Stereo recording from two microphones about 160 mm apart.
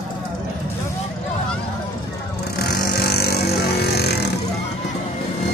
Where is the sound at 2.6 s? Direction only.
85° left.